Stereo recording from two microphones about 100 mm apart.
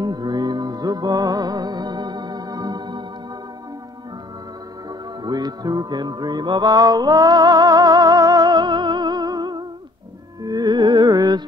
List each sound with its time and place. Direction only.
0.0 s music: 45° right (ahead or behind)
5.2 s music: 40° right (ahead or behind)